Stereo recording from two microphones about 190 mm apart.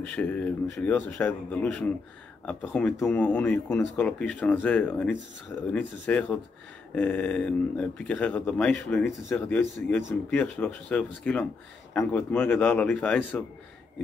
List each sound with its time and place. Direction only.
0.0 s speech: 5° left (ahead or behind)